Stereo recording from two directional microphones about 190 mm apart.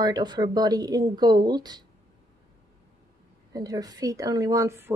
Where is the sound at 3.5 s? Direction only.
20° right (ahead or behind).